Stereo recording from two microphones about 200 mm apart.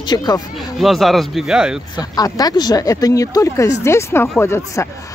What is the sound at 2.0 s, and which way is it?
Speech, 20° left (ahead or behind).